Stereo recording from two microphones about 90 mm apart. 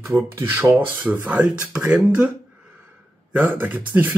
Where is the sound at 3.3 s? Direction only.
15° right (ahead or behind).